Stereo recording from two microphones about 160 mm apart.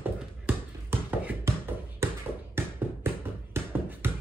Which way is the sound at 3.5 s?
15° right (ahead or behind).